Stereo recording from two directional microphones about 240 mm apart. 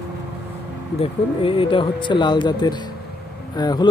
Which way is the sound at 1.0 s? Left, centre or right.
Left.